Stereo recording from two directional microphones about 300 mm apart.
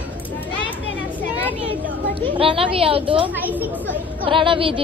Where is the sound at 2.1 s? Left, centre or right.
Centre.